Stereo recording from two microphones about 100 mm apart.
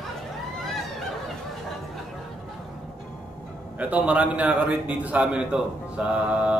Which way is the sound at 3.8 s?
15° right (ahead or behind).